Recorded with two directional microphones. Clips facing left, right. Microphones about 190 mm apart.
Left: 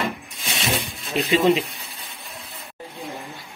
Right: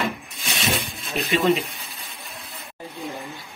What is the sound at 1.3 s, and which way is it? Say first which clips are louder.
Speech: left 2 dB; 25° left (ahead or behind).